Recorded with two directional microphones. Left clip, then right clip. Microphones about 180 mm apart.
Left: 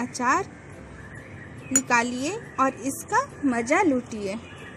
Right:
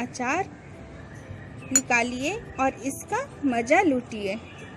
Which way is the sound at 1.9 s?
30° left (ahead or behind).